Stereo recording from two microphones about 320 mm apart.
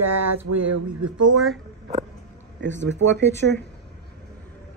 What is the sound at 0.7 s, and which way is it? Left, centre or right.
Speech, right.